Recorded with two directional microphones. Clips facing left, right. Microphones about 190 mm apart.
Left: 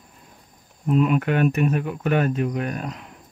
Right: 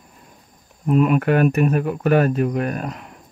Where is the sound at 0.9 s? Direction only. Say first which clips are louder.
Right 3 dB; 55° right (ahead or behind).